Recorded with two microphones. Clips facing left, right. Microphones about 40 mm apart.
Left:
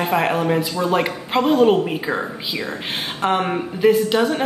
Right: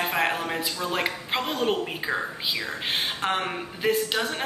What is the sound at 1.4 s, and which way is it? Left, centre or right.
Speech, centre.